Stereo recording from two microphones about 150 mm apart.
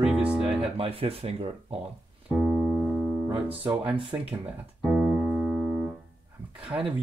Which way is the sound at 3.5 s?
35° right (ahead or behind).